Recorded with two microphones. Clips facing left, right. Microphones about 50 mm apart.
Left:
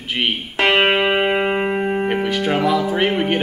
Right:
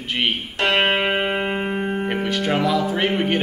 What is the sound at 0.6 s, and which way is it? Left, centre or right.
Music, left.